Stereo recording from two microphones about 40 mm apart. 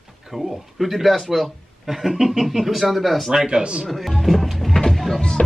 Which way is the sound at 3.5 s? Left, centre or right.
Right.